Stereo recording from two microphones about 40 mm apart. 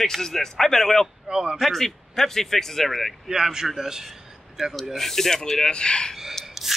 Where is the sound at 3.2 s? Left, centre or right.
Centre.